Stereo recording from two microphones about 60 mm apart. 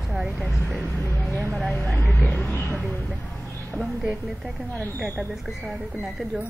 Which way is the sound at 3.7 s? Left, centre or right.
Centre.